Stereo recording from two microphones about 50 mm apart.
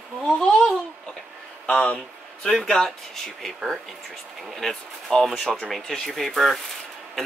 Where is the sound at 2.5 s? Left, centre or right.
Centre.